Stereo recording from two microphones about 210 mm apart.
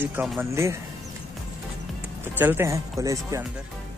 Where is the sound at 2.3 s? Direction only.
10° right (ahead or behind).